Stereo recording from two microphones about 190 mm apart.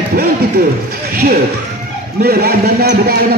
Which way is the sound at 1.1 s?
55° right (ahead or behind).